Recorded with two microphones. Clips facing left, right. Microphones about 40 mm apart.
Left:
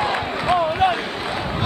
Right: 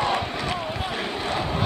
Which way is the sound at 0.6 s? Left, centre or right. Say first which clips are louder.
Left 10 dB; left.